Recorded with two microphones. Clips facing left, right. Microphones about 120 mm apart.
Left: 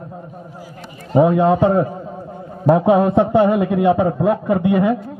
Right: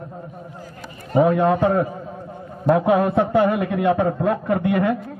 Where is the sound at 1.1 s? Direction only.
20° left (ahead or behind).